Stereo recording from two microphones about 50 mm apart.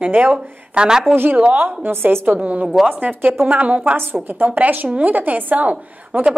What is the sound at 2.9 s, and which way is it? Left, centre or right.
A woman's voice, right.